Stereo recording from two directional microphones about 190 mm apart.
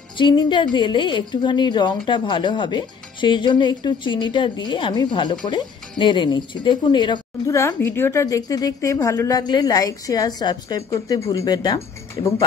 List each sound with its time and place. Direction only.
0.2 s a woman's voice: 25° left (ahead or behind)